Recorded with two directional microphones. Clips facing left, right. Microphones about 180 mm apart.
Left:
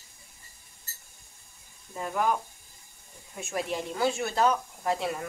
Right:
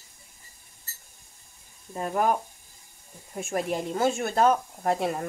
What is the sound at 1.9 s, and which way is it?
Speech, 45° right (ahead or behind).